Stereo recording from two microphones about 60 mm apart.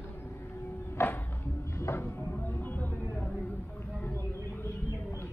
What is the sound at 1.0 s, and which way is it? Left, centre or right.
Music, left.